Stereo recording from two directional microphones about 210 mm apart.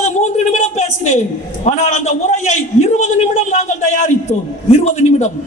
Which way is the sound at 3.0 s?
35° left (ahead or behind).